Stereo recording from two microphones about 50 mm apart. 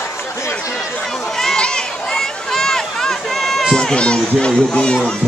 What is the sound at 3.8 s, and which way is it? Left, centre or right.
Speech, centre.